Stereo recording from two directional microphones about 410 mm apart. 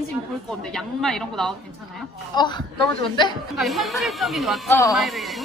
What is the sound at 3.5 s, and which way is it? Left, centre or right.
Speech, centre.